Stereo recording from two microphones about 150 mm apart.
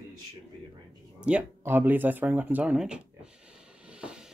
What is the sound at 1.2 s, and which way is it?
Speech, 10° right (ahead or behind).